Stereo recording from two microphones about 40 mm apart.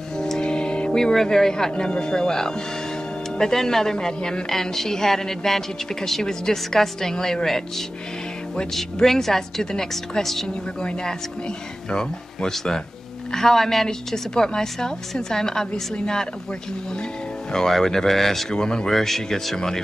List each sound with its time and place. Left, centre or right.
0.2 s music: centre
0.9 s a woman's voice: centre
9.0 s a woman's voice: centre
10.2 s speech: centre
10.5 s a woman's voice: centre
17.5 s a woman's voice: centre
18.5 s a woman's voice: centre
18.9 s a woman's voice: centre